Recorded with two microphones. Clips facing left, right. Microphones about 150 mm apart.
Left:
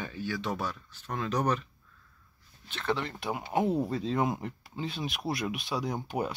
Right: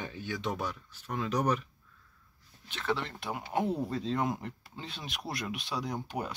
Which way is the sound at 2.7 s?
5° right (ahead or behind).